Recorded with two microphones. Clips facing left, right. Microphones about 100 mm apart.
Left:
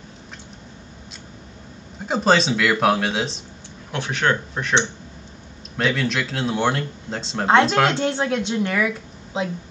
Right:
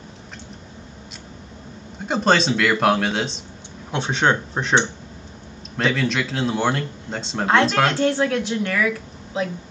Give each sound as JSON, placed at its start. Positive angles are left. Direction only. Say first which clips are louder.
{"t": 2.0, "sound": "speech", "louder": "even", "side_deg": 0}
{"t": 3.9, "sound": "speech", "louder": "right 2 dB", "side_deg": -25}
{"t": 5.8, "sound": "speech", "louder": "right 1 dB", "side_deg": 0}
{"t": 7.8, "sound": "a woman's voice", "louder": "right 1 dB", "side_deg": 20}